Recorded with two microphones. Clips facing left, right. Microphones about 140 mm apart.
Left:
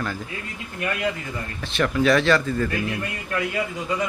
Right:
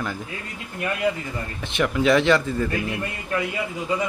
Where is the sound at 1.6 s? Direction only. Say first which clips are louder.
Left 1 dB; 15° right (ahead or behind).